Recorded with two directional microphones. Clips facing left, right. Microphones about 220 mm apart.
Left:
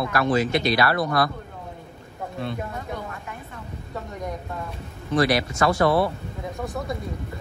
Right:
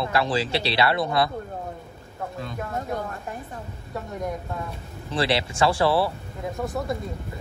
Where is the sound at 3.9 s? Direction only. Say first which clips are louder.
Right 2 dB; centre (ahead or behind).